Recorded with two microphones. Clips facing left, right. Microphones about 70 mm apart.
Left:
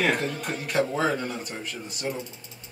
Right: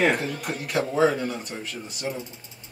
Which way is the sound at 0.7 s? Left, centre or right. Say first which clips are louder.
Right 3 dB; centre.